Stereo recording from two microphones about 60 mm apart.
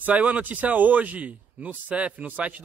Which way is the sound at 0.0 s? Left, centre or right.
Right.